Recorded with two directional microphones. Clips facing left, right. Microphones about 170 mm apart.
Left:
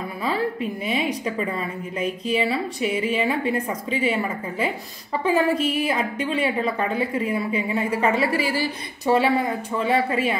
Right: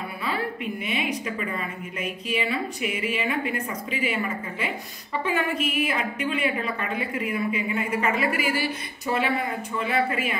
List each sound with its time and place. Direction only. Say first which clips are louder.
0.8 s a woman's voice: left 4 dB; 35° left (ahead or behind)